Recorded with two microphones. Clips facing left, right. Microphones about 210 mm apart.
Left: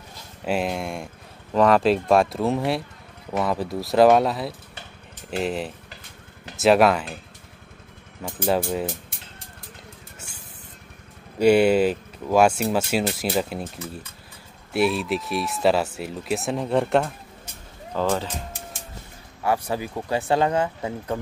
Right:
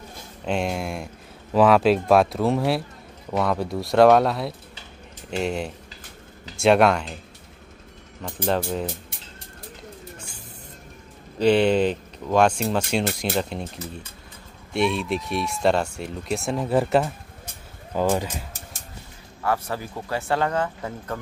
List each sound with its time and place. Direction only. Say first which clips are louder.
0.5 s speech: even; centre (ahead or behind)
8.5 s speech: left 1 dB; 5° left (ahead or behind)
11.3 s speech: left 2 dB; 10° left (ahead or behind)
14.7 s speech: left 1 dB; 5° left (ahead or behind)
17.9 s speech: right 1 dB; 15° right (ahead or behind)
19.4 s speech: left 2 dB; 15° left (ahead or behind)